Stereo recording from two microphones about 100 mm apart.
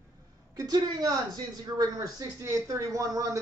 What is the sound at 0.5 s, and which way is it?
Speech, 40° right (ahead or behind).